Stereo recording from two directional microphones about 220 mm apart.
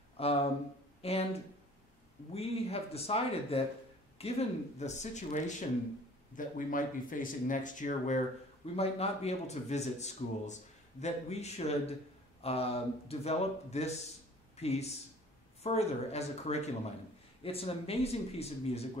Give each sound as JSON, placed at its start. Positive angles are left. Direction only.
{"t": 0.2, "sound": "a man's voice", "side_deg": 25}
{"t": 2.3, "sound": "a man's voice", "side_deg": 25}